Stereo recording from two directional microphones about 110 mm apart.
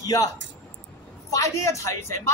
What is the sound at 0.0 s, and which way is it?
Speech, 35° left (ahead or behind).